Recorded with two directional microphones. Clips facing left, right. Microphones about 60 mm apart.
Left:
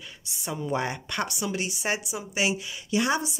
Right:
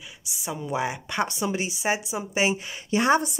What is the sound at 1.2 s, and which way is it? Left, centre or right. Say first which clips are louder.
Speech: right 3 dB; right.